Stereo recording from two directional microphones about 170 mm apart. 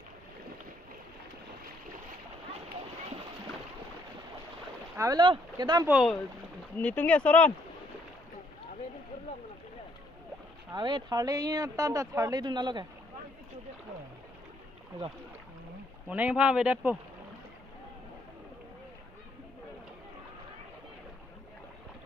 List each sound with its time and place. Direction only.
4.9 s speech: 20° right (ahead or behind)
5.9 s speech: 5° right (ahead or behind)
6.8 s speech: 10° left (ahead or behind)
10.7 s speech: 25° right (ahead or behind)
16.1 s speech: 5° right (ahead or behind)